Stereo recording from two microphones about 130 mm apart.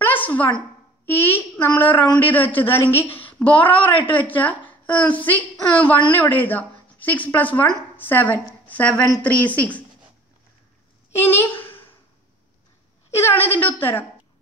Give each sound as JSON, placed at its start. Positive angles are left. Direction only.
{"t": 0.0, "sound": "a sound", "side_deg": 15}
{"t": 1.1, "sound": "a woman's voice", "side_deg": 15}
{"t": 11.1, "sound": "a woman's voice", "side_deg": 15}
{"t": 13.1, "sound": "a woman's voice", "side_deg": 15}